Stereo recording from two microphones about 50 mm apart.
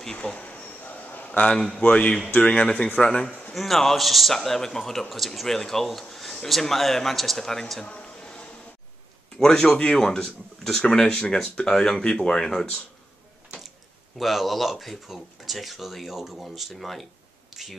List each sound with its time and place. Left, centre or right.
0.4 s a sound: left
1.5 s speech: centre
1.8 s speech: left
3.5 s speech: centre
7.8 s a sound: left
9.4 s speech: centre
10.8 s speech: centre
14.1 s speech: centre